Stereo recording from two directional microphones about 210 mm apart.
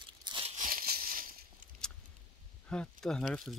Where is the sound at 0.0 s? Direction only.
20° right (ahead or behind).